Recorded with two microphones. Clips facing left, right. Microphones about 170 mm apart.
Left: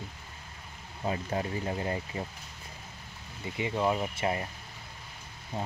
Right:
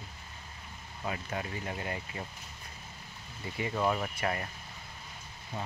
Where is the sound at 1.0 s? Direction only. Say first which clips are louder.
Left 5 dB; 30° left (ahead or behind).